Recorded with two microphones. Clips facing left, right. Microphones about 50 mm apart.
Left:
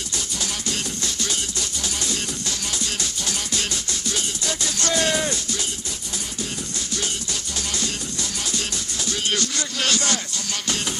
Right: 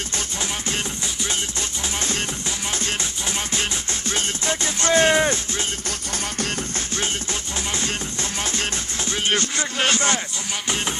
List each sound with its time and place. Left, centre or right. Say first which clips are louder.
0.4 s music: right 2 dB; right
2.0 s music: right 4 dB; right
7.7 s music: right 2 dB; right